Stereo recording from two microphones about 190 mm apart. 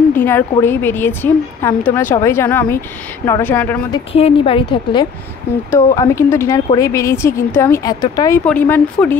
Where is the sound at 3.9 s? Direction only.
30° left (ahead or behind).